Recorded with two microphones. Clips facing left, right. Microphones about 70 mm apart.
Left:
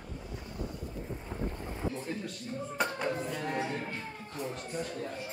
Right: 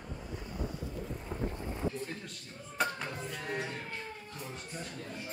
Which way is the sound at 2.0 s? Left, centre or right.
Centre.